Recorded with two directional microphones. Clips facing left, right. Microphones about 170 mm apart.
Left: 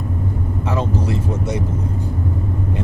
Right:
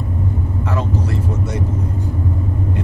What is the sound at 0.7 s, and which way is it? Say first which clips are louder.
Vehicle: left 2 dB; 20° left (ahead or behind).